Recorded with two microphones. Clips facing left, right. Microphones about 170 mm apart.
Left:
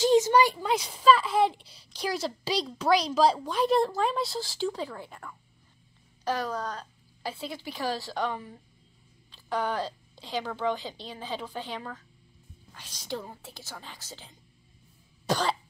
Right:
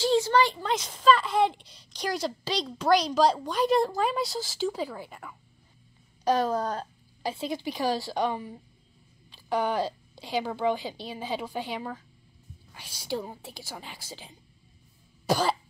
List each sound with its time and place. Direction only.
0.0 s speech: 20° left (ahead or behind); by 5.3 s 5° right (ahead or behind)
6.2 s speech: 25° right (ahead or behind)
7.2 s a woman's voice: 15° right (ahead or behind)
15.2 s cough: 10° right (ahead or behind)